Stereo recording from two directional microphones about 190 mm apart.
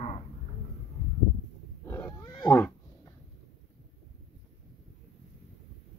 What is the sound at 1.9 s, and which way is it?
Roaring cats, 15° left (ahead or behind).